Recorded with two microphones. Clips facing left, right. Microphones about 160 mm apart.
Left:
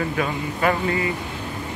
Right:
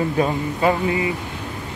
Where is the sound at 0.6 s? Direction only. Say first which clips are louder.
Right 2 dB; 25° right (ahead or behind).